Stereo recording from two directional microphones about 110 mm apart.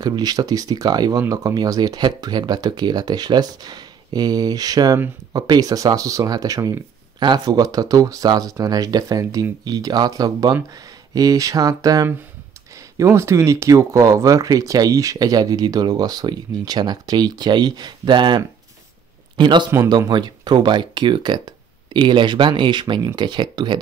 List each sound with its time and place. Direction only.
0.0 s speech: 35° right (ahead or behind)